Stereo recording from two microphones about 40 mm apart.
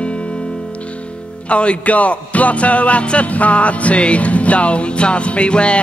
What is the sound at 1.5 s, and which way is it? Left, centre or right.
Music, left.